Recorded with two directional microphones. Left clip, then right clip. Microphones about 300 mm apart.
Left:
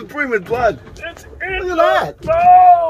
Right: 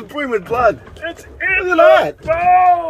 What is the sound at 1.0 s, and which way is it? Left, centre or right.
Speech, right.